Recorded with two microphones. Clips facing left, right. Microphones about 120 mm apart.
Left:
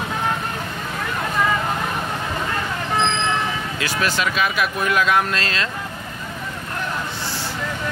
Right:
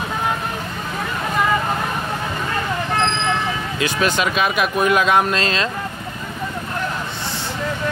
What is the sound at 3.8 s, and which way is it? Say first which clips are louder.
Speech: right 3 dB; 20° right (ahead or behind).